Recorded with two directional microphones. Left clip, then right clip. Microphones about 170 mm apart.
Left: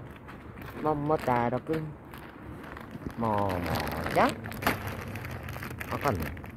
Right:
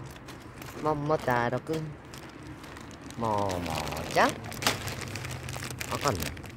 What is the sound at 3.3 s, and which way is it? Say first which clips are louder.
Speech: even; 20° left (ahead or behind).